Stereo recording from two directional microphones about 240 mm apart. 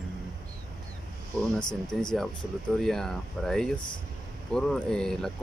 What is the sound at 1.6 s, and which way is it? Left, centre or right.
Speech, centre.